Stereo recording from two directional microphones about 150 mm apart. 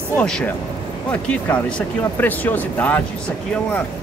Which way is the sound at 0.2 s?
5° left (ahead or behind).